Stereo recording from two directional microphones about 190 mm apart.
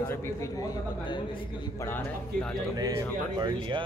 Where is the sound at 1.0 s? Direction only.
25° left (ahead or behind).